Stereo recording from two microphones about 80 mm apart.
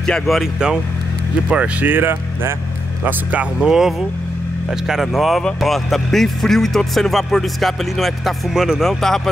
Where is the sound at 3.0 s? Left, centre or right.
Centre.